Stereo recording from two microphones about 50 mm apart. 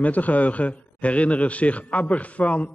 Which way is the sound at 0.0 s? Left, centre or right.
Left.